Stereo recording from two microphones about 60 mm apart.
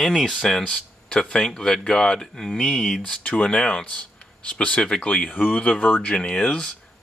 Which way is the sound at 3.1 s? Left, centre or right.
Centre.